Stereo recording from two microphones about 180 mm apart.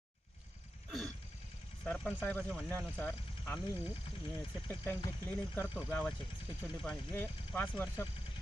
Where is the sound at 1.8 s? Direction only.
10° left (ahead or behind).